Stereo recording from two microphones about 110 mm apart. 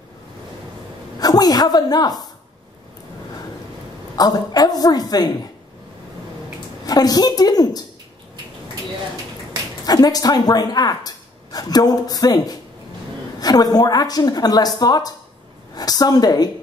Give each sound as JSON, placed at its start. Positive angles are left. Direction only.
{"t": 1.2, "sound": "a woman's voice", "side_deg": 35}
{"t": 4.2, "sound": "speech", "side_deg": 35}
{"t": 6.9, "sound": "speech", "side_deg": 35}
{"t": 9.8, "sound": "speech", "side_deg": 35}